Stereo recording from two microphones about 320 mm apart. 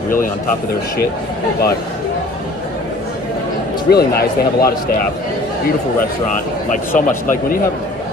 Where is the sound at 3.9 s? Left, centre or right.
Left.